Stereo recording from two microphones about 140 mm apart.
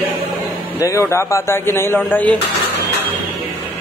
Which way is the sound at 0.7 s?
20° left (ahead or behind).